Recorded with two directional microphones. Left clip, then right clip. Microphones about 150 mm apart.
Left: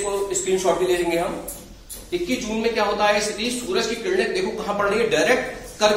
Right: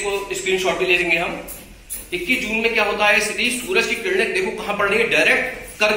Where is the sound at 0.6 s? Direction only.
15° left (ahead or behind).